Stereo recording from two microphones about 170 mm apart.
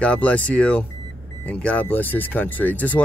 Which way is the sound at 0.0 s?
10° left (ahead or behind).